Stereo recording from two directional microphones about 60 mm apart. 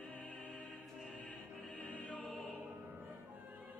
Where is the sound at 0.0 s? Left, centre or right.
Left.